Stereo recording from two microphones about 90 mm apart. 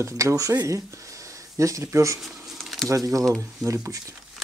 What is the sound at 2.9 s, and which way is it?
Speech, 40° right (ahead or behind).